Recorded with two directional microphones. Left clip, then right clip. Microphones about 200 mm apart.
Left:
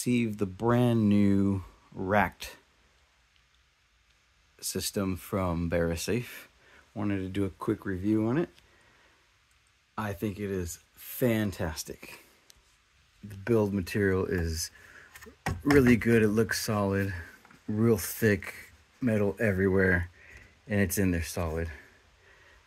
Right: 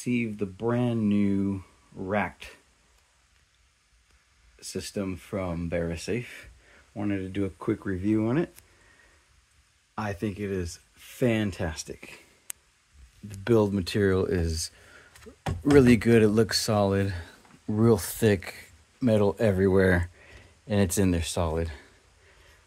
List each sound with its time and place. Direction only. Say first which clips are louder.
0.0 s speech: even; 25° left (ahead or behind)
4.6 s speech: left 1 dB; 20° left (ahead or behind); by 8.5 s 5° left (ahead or behind)
9.9 s speech: right 2 dB; 5° left (ahead or behind)
13.4 s speech: right 4 dB; centre (ahead or behind)
14.6 s a sound: right 2 dB; centre (ahead or behind)
15.6 s speech: right 3 dB; centre (ahead or behind)